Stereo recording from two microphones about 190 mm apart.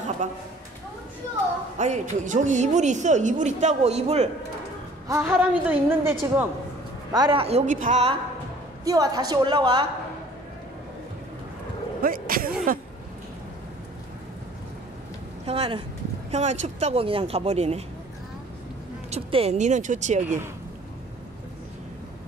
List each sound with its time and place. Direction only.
0.2 s speech: 45° right (ahead or behind)
1.8 s a woman's voice: 40° right (ahead or behind)
5.0 s a woman's voice: 15° right (ahead or behind)
7.1 s a woman's voice: 20° right (ahead or behind)
8.8 s a woman's voice: 20° right (ahead or behind)
12.0 s vehicle: 50° right (ahead or behind)
15.4 s a woman's voice: 30° right (ahead or behind)
19.0 s a woman's voice: 35° right (ahead or behind)